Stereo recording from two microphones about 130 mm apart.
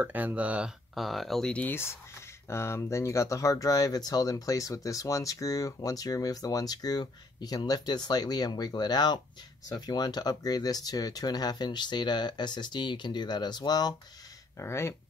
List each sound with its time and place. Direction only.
0.0 s speech: 15° right (ahead or behind); by 13.9 s 30° left (ahead or behind)
14.6 s speech: 20° left (ahead or behind)